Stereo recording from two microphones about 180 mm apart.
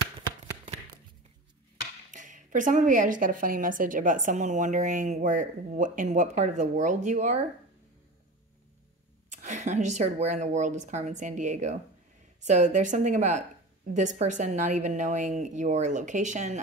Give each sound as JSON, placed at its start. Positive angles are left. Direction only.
{"t": 2.0, "sound": "a woman's voice", "side_deg": -45}
{"t": 9.3, "sound": "a woman's voice", "side_deg": -40}